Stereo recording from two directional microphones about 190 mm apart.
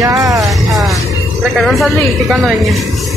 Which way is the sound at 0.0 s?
20° right (ahead or behind).